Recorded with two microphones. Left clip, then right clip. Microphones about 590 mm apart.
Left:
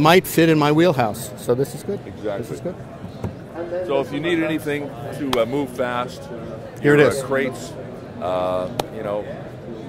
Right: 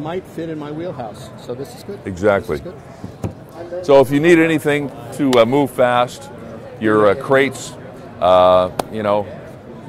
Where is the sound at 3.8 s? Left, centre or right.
Right.